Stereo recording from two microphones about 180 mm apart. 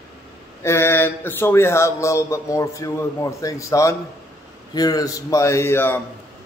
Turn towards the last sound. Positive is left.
turn(degrees=15)  # may be behind; listen again after turning